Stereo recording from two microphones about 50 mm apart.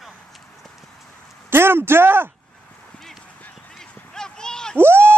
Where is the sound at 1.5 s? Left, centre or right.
Right.